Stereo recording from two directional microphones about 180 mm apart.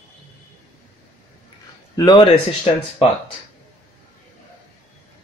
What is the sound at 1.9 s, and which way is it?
Speech, 25° left (ahead or behind).